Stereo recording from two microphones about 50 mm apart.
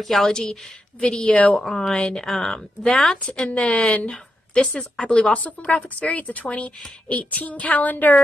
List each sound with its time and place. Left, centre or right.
0.0 s a woman's voice: centre; by 1.6 s left
1.6 s a woman's voice: centre
4.1 s a woman's voice: centre
7.1 s child singing: left